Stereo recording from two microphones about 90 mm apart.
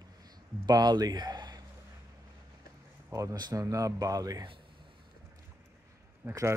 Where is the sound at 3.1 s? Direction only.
40° right (ahead or behind).